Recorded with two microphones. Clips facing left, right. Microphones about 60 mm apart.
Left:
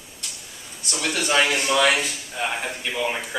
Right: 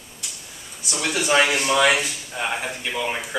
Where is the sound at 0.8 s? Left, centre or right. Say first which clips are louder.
Right 1 dB; centre.